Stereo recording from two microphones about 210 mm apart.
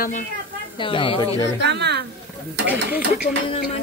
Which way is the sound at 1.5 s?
55° right (ahead or behind).